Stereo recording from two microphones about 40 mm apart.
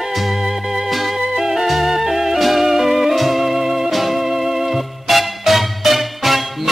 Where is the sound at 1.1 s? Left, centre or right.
Centre.